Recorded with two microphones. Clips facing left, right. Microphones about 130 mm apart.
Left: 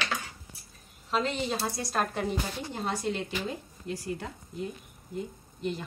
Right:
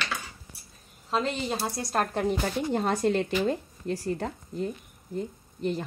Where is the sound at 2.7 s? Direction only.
45° right (ahead or behind).